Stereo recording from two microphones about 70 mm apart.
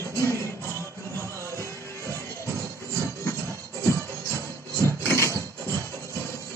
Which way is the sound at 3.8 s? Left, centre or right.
Right.